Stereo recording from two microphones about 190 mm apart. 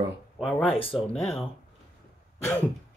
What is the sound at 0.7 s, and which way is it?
Speech, 30° left (ahead or behind).